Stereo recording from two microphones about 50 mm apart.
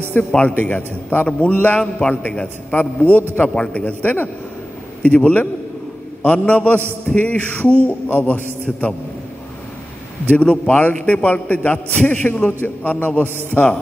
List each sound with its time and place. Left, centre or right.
0.2 s a man's voice: left
3.4 s a man's voice: centre
3.7 s a man's voice: left
10.3 s a man's voice: left